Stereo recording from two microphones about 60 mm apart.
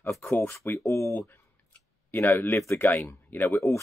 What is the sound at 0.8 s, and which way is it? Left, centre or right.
Speech, left.